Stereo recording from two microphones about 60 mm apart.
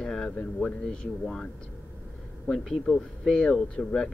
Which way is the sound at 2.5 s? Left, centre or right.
Centre.